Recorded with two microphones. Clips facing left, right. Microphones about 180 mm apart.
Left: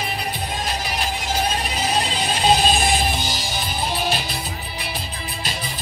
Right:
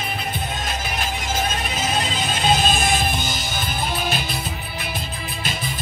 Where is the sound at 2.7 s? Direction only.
50° right (ahead or behind).